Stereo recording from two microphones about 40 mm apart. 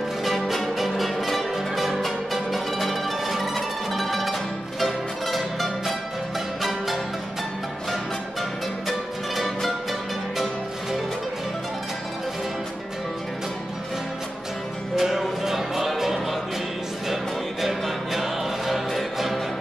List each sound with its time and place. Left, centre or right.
0.2 s music: centre
8.8 s music: centre
15.0 s music: centre